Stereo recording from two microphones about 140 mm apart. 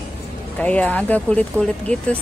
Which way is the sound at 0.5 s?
10° left (ahead or behind).